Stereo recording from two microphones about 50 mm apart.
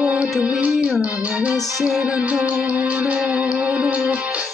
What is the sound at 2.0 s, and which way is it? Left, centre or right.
Music, right.